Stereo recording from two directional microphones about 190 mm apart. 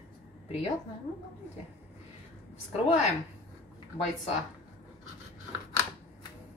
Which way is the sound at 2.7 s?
35° left (ahead or behind).